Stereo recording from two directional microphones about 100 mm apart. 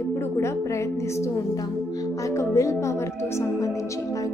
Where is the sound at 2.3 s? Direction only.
30° left (ahead or behind).